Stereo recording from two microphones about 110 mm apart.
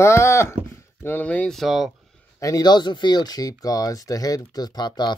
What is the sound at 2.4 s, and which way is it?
Speech, 35° left (ahead or behind).